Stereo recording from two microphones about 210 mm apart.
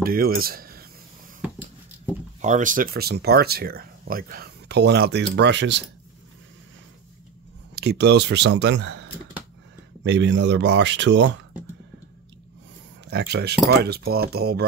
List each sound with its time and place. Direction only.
0.0 s speech: 45° right (ahead or behind)
2.4 s speech: 35° right (ahead or behind); by 5.9 s 55° right (ahead or behind)
7.7 s speech: 50° right (ahead or behind)
10.0 s speech: 60° right (ahead or behind)
13.0 s speech: 55° right (ahead or behind)